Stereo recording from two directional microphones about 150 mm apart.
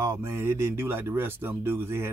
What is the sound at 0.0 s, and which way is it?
Speech, 15° right (ahead or behind).